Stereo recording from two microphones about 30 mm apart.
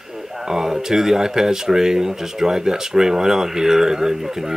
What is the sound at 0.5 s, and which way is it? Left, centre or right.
Speech, centre.